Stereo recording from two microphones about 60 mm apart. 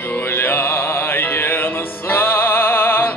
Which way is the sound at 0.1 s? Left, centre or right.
Left.